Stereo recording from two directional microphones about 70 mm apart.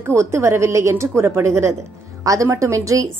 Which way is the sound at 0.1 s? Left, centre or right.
Right.